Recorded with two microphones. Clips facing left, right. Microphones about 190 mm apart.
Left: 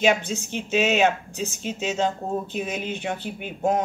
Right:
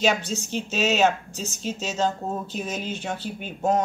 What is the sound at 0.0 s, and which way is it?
Speech, 55° left (ahead or behind).